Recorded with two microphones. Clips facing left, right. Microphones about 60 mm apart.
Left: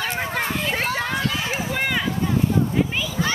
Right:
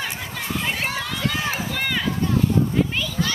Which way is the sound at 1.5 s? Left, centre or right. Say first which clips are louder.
Left 2 dB; centre.